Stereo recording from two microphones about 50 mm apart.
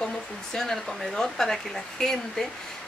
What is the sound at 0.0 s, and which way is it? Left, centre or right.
A woman's voice, centre.